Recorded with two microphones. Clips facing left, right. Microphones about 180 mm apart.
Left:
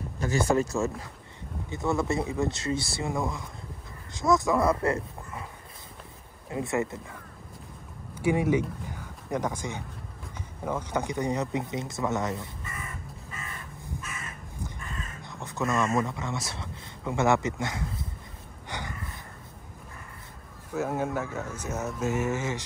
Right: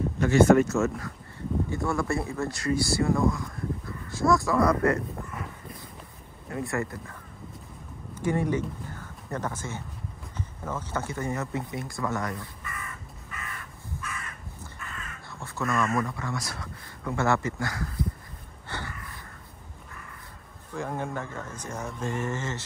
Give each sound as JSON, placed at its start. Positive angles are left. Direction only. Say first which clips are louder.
{"t": 0.3, "sound": "speech", "louder": "right 6 dB", "side_deg": 30}
{"t": 6.5, "sound": "speech", "louder": "left 2 dB", "side_deg": 20}
{"t": 8.2, "sound": "speech", "louder": "left 2 dB", "side_deg": 10}
{"t": 14.0, "sound": "crow", "louder": "right 1 dB", "side_deg": 25}
{"t": 18.7, "sound": "snort", "louder": "even", "side_deg": 15}
{"t": 20.7, "sound": "speech", "louder": "left 3 dB", "side_deg": 5}